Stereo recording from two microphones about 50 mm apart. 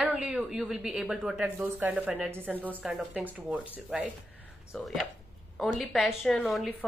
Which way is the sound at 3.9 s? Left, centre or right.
Centre.